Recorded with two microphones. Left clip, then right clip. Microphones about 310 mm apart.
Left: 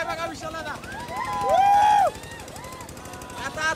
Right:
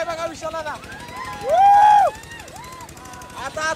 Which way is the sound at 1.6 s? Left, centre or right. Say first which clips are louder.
Right 6 dB; right.